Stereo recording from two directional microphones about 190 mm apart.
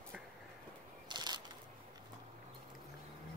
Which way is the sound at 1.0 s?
20° right (ahead or behind).